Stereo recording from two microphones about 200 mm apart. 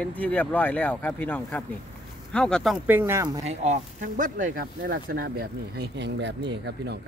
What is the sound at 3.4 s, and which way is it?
Speech, 35° right (ahead or behind).